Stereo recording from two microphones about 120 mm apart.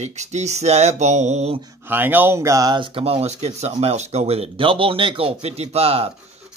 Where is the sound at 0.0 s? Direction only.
75° right (ahead or behind).